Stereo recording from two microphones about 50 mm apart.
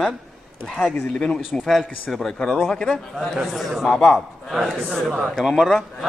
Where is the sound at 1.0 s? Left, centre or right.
Centre.